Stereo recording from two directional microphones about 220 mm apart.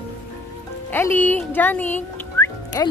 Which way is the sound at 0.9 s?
10° left (ahead or behind).